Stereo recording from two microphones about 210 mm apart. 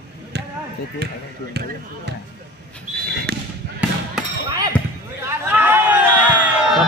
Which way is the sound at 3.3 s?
50° right (ahead or behind).